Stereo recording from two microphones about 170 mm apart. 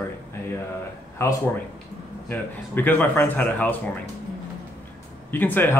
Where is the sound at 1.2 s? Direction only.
15° left (ahead or behind).